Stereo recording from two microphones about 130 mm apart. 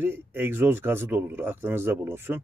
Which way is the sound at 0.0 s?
15° right (ahead or behind).